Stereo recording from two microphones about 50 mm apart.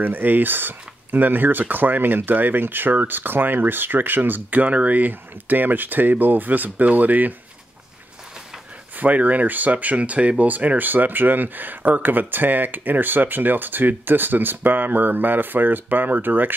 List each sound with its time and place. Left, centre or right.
0.0 s speech: right
8.9 s speech: right